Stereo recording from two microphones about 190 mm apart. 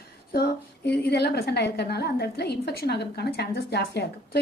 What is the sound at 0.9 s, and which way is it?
A woman's voice, 60° left (ahead or behind).